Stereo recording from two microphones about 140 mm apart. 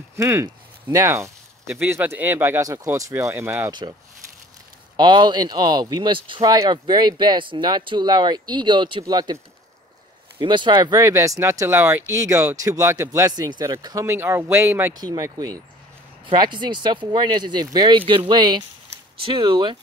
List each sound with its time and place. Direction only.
0.1 s speech: 20° right (ahead or behind)
4.9 s speech: 35° right (ahead or behind)
10.4 s speech: 35° right (ahead or behind)